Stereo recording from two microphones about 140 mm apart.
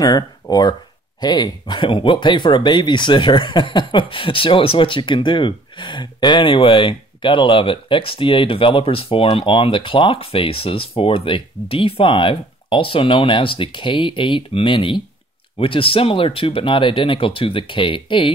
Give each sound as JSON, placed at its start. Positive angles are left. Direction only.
{"t": 0.0, "sound": "speech", "side_deg": 25}